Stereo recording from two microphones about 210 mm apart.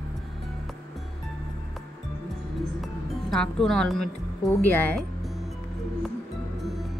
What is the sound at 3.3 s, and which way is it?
A woman's voice, centre (ahead or behind).